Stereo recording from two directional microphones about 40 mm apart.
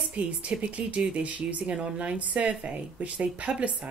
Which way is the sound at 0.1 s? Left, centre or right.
Right.